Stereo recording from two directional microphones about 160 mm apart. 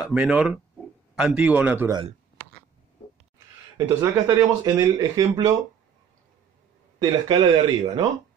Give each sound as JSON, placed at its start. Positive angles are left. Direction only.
{"t": 0.0, "sound": "a man's voice", "side_deg": -5}
{"t": 4.0, "sound": "speech", "side_deg": -20}
{"t": 7.0, "sound": "speech", "side_deg": -30}